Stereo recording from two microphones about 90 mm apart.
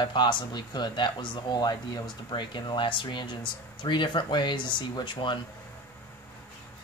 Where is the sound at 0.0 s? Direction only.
55° left (ahead or behind).